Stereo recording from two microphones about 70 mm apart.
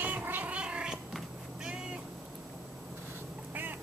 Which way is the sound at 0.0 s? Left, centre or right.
Right.